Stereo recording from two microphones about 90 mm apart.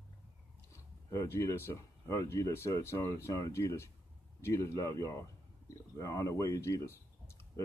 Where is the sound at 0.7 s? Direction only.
35° left (ahead or behind).